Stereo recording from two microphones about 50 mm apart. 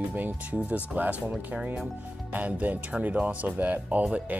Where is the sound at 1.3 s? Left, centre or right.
Centre.